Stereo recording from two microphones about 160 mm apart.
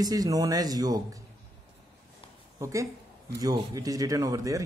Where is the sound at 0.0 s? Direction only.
25° right (ahead or behind).